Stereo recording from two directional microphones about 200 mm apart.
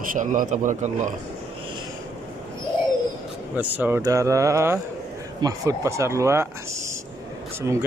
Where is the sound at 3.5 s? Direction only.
10° right (ahead or behind).